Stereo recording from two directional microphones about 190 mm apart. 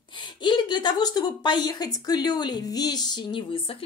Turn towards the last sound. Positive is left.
turn(degrees=25)  # may be behind; listen again after turning